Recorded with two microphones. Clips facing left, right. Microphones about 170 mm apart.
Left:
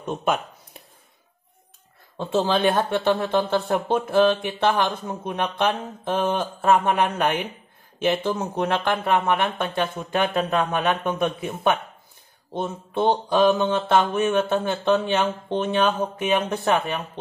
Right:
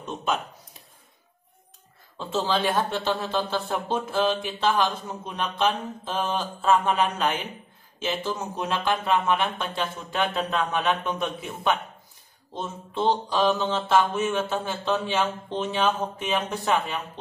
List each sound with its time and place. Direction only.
0.0 s speech: 55° left (ahead or behind)
2.3 s speech: 55° left (ahead or behind)
12.5 s speech: 55° left (ahead or behind)